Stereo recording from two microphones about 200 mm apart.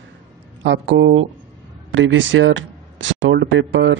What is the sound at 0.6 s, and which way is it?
Speech, 60° right (ahead or behind).